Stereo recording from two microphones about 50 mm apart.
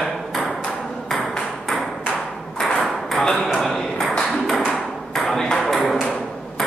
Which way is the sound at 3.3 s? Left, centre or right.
Left.